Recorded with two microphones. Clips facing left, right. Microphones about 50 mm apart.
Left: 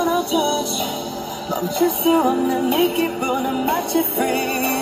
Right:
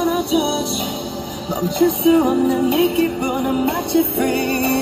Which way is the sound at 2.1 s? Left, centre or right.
Centre.